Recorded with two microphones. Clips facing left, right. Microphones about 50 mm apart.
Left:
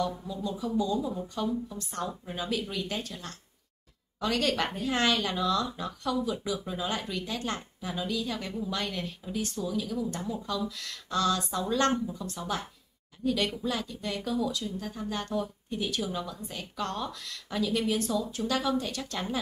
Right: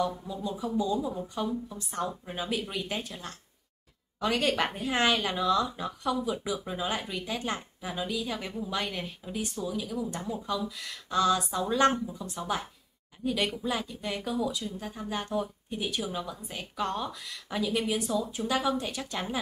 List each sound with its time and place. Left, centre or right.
0.3 s speech: centre